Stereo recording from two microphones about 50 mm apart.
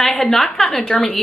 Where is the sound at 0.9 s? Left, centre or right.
Left.